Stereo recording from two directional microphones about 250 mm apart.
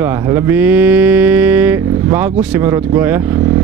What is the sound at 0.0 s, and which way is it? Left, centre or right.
Mantra, centre.